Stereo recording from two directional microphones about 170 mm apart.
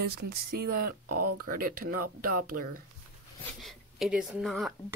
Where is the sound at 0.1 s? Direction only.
65° right (ahead or behind).